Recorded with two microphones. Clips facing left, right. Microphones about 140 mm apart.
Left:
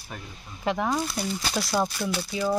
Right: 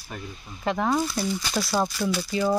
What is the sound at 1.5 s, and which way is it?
Speech, centre (ahead or behind).